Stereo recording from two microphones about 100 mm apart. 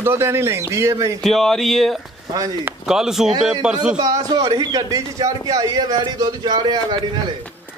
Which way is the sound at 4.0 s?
40° right (ahead or behind).